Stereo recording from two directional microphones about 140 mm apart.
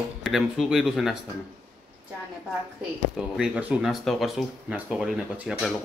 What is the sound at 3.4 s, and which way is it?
Speech, 5° right (ahead or behind).